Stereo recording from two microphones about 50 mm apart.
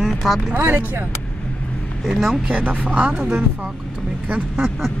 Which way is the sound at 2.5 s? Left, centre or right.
Right.